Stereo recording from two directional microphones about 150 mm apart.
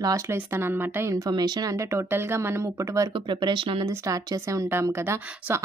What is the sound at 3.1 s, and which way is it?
Speech, 30° right (ahead or behind).